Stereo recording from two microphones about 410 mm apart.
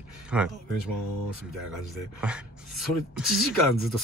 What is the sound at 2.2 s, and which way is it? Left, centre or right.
Speech, centre.